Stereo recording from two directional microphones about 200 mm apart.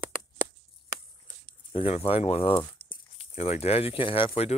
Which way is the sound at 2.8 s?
55° right (ahead or behind).